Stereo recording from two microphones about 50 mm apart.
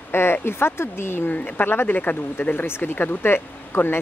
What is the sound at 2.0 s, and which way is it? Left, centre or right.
Speech, left.